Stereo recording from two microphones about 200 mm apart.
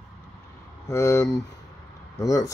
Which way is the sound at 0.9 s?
15° left (ahead or behind).